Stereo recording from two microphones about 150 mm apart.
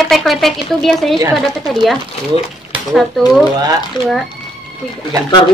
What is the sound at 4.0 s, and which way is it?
Speech, 30° left (ahead or behind).